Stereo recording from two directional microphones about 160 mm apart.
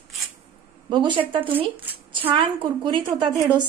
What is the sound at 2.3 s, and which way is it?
A woman's voice, 30° right (ahead or behind).